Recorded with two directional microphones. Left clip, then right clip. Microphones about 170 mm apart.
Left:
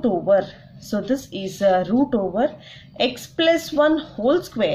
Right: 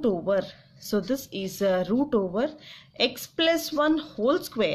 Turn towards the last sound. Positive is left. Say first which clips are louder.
# left 5 dB
turn(degrees=-50)  # may be behind; listen again after turning